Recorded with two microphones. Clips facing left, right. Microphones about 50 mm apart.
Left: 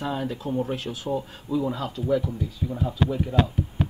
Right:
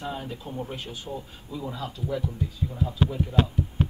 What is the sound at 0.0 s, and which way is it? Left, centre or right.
Speech, left.